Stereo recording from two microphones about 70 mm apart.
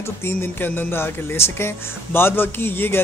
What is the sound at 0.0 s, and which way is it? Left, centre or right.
Speech, left.